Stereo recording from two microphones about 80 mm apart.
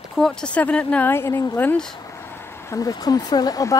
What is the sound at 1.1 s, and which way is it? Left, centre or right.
Speech, left.